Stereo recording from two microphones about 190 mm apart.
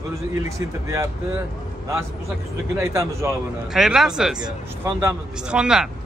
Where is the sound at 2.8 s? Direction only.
15° right (ahead or behind).